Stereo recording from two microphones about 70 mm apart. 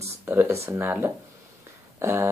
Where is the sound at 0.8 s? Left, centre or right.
Right.